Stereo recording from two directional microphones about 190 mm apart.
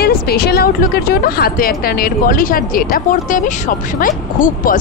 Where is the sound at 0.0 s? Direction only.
55° left (ahead or behind).